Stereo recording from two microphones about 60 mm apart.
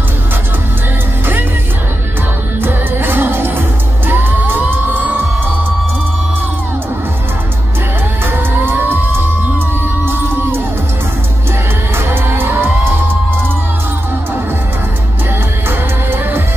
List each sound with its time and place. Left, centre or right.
2.6 s music: right
8.6 s music: right
12.1 s music: right
16.1 s music: right